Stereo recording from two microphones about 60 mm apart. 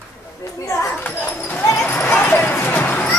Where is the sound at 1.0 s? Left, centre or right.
Left.